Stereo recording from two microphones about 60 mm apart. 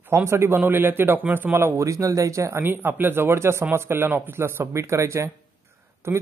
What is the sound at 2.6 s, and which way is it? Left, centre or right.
A man's voice, right.